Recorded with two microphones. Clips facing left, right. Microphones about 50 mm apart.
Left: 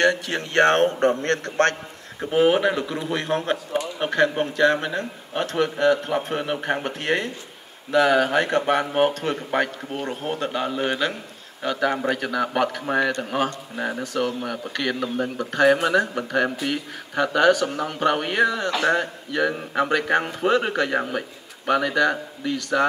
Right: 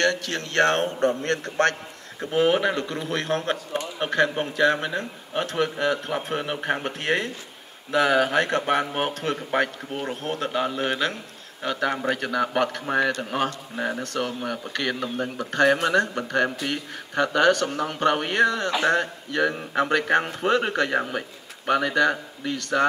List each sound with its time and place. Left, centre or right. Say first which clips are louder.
0.0 s speech: left 3 dB; centre
0.7 s a man's voice: left 4 dB; left
2.3 s speech: left 2 dB; centre